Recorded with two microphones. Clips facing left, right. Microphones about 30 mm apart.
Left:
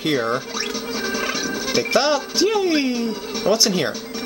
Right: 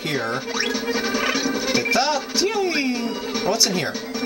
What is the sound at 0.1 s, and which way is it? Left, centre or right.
Speech, centre.